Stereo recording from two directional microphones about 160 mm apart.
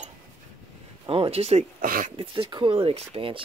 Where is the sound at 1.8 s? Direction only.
60° right (ahead or behind).